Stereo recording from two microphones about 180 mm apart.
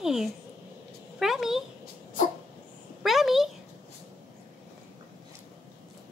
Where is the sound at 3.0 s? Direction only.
Centre (ahead or behind).